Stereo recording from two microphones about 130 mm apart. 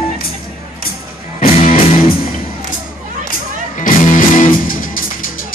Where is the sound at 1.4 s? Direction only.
90° left.